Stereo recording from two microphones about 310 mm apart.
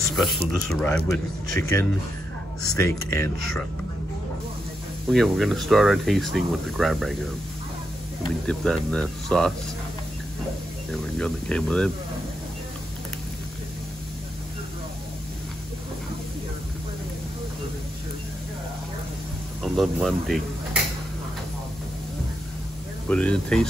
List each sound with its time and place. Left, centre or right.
0.0 s speech: centre
5.1 s speech: centre
8.5 s speech: centre
10.9 s speech: centre
19.6 s speech: centre
23.0 s speech: centre